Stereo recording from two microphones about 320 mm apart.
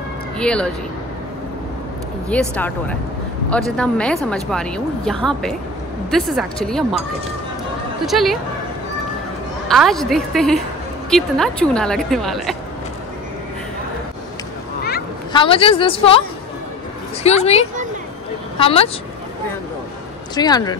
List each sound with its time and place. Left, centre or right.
0.4 s a woman's voice: centre
2.2 s a woman's voice: centre
8.0 s a woman's voice: centre
9.7 s a woman's voice: centre
14.8 s a sound: left
15.3 s a woman's voice: centre
20.3 s a woman's voice: centre